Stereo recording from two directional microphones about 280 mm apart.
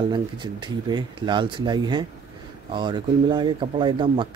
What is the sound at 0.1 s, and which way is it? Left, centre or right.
Speech, centre.